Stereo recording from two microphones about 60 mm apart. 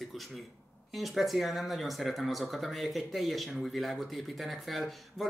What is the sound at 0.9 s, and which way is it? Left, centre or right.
Speech, centre.